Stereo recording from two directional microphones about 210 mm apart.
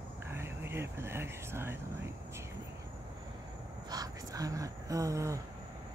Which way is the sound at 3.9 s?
15° right (ahead or behind).